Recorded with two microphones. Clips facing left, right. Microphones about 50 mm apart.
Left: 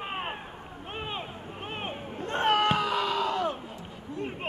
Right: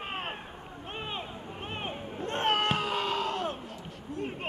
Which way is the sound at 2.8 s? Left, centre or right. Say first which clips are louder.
Left 3 dB; right.